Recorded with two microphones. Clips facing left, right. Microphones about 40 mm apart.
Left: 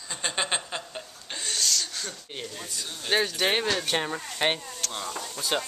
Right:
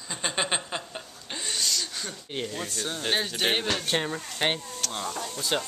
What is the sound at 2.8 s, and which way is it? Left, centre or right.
Speech, right.